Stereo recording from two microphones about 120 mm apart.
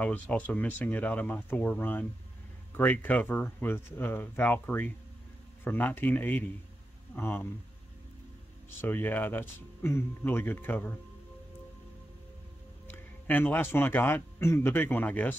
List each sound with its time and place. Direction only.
0.0 s speech: 15° left (ahead or behind)
8.6 s speech: 15° left (ahead or behind)
12.8 s speech: 15° left (ahead or behind)